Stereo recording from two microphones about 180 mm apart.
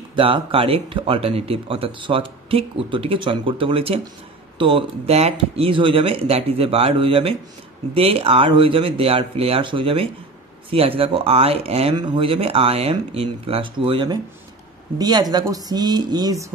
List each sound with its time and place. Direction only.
0.1 s speech: 30° right (ahead or behind)